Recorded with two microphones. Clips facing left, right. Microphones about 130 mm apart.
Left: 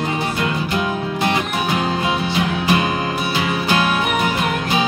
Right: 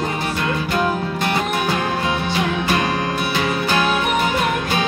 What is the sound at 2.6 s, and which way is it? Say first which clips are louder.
Music: left 2 dB; 15° left (ahead or behind).